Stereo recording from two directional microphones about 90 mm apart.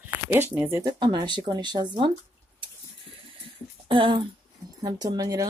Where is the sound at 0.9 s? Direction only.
60° right (ahead or behind).